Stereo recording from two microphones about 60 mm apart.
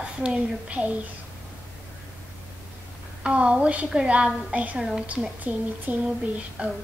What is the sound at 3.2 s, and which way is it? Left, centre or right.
A woman's voice, centre.